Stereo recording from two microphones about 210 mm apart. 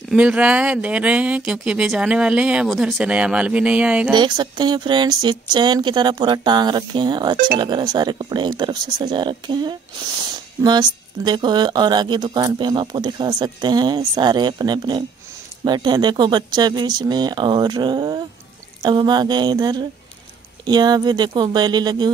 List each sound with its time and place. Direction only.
0.1 s speech: 5° right (ahead or behind)
4.1 s speech: 20° right (ahead or behind)